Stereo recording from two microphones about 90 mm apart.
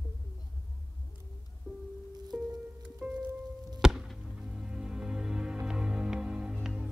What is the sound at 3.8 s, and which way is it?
Chop, 5° right (ahead or behind).